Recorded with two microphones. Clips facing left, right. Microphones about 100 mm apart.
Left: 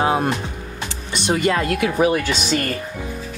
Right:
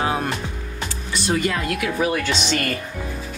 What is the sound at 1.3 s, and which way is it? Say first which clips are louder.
Speech: left 4 dB; 30° left (ahead or behind).